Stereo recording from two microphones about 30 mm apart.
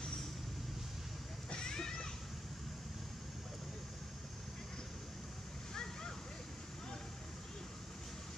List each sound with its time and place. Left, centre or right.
1.5 s children playing: left